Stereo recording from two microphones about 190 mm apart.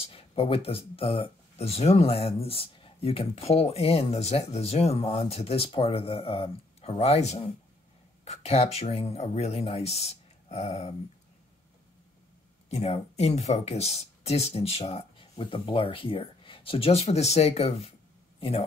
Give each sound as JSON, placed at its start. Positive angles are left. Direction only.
{"t": 0.0, "sound": "speech", "side_deg": 30}
{"t": 12.6, "sound": "speech", "side_deg": 35}